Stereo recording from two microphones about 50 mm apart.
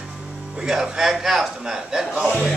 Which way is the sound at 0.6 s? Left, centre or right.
Centre.